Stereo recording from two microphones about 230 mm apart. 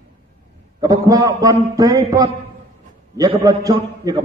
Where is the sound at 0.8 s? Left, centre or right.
Centre.